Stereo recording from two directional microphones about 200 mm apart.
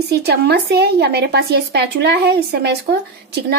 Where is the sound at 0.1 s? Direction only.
55° right (ahead or behind).